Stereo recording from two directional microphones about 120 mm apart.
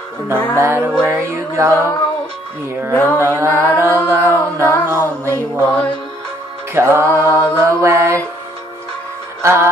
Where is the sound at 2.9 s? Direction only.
15° left (ahead or behind).